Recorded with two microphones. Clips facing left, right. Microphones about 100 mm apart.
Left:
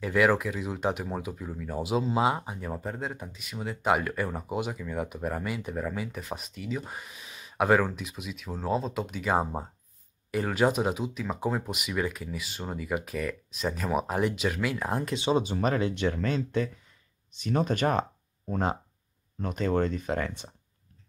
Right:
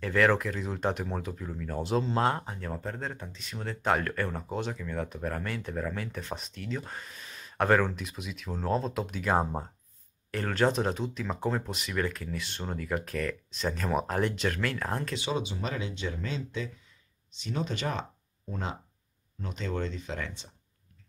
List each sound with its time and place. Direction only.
0.0 s speech: 5° left (ahead or behind)
15.5 s speech: 50° left (ahead or behind)